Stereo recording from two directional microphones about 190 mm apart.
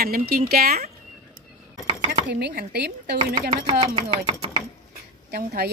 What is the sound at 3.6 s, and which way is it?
Chopping, 30° right (ahead or behind).